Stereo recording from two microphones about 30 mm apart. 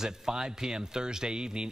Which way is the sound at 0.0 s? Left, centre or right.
Right.